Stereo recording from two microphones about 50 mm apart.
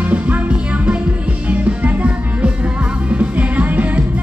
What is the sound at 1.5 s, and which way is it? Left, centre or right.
Music, right.